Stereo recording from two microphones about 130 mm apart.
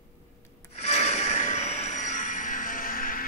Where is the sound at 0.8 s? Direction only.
55° left (ahead or behind).